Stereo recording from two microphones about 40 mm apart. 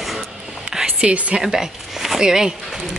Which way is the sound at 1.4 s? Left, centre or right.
Centre.